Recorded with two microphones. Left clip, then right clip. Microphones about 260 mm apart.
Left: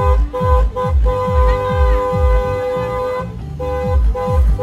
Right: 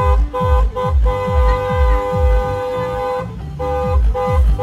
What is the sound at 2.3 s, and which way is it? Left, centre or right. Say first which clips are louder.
Music: left 1 dB; centre.